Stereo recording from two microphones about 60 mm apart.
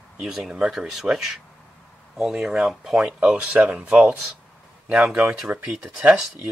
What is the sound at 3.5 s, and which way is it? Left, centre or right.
Speech, right.